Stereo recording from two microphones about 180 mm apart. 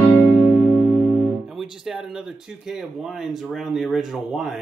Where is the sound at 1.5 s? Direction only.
Centre (ahead or behind).